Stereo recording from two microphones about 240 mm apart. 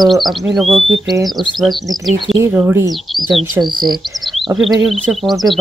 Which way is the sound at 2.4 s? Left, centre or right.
Centre.